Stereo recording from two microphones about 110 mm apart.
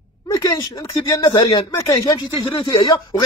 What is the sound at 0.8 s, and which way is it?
Speech, 40° left (ahead or behind).